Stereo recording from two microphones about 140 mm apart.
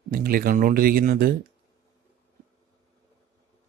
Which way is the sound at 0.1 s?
90° right.